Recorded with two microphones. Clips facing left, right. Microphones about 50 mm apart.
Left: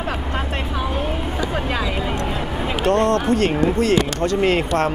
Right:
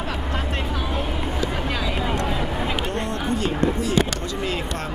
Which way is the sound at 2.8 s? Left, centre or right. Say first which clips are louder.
Left 9 dB; left.